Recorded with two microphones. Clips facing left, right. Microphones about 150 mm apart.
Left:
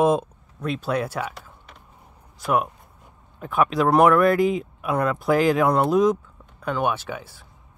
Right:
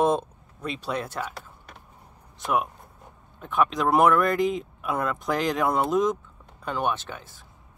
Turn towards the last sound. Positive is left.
turn(degrees=10)  # may be behind; listen again after turning